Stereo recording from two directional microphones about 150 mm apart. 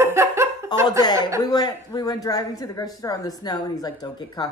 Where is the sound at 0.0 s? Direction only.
20° right (ahead or behind).